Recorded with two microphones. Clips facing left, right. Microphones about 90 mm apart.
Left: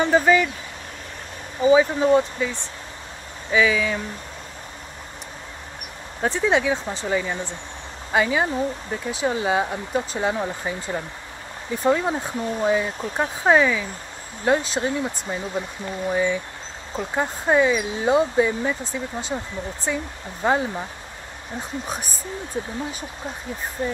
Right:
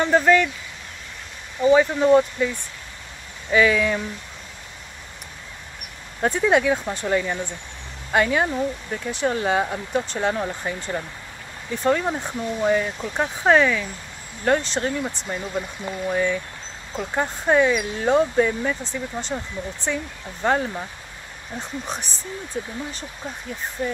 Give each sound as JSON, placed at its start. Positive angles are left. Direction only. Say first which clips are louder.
{"t": 0.0, "sound": "speech", "louder": "even", "side_deg": 5}
{"t": 1.6, "sound": "speech", "louder": "even", "side_deg": 10}
{"t": 3.5, "sound": "speech", "louder": "right 2 dB", "side_deg": 5}
{"t": 6.2, "sound": "speech", "louder": "right 2 dB", "side_deg": 0}
{"t": 22.5, "sound": "speech", "louder": "left 1 dB", "side_deg": 25}